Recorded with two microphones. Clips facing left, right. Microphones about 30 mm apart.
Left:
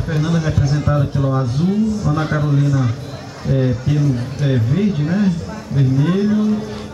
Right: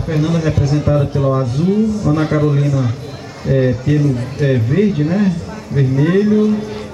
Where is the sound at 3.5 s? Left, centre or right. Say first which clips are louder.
Right 4 dB; right.